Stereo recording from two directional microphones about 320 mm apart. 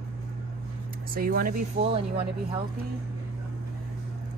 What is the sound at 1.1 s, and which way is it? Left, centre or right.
Speech, right.